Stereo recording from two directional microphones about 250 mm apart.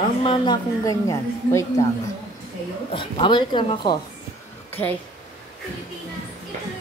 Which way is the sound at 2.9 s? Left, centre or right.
Centre.